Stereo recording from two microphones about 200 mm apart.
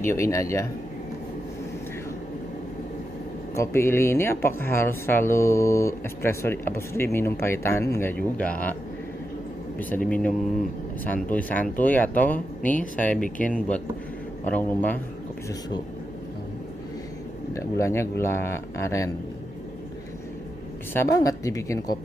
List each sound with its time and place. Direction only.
0.0 s speech: 15° left (ahead or behind)
3.5 s speech: 15° left (ahead or behind)
10.0 s speech: 5° left (ahead or behind)
14.5 s speech: 10° left (ahead or behind)
17.6 s speech: 15° left (ahead or behind)
20.9 s speech: 15° left (ahead or behind)